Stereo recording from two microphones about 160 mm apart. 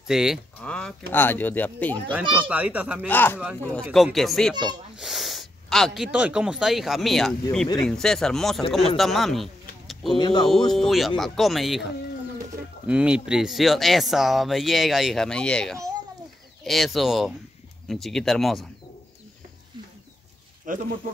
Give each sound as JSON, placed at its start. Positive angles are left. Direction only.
{"t": 0.0, "sound": "speech", "side_deg": -5}
{"t": 2.2, "sound": "speech", "side_deg": -30}
{"t": 2.5, "sound": "a child's voice", "side_deg": -10}
{"t": 3.1, "sound": "speech", "side_deg": 10}
{"t": 3.9, "sound": "speech", "side_deg": 0}
{"t": 4.9, "sound": "snort", "side_deg": 0}
{"t": 6.1, "sound": "speech", "side_deg": -5}
{"t": 10.1, "sound": "speech", "side_deg": 30}
{"t": 10.7, "sound": "speech", "side_deg": 0}
{"t": 20.7, "sound": "speech", "side_deg": -55}